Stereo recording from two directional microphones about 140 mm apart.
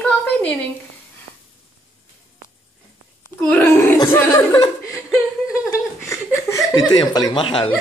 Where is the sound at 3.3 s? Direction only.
15° left (ahead or behind).